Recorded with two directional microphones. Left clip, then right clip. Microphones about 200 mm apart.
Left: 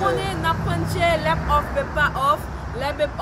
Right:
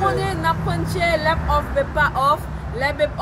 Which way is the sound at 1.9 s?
5° right (ahead or behind).